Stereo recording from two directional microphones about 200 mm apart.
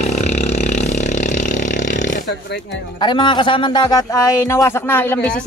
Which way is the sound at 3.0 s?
25° left (ahead or behind).